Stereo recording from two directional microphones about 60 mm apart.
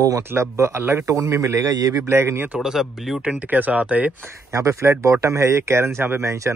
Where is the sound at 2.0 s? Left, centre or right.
Right.